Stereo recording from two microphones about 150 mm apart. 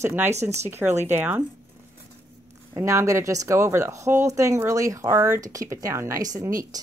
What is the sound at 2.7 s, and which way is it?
Speech, 20° right (ahead or behind).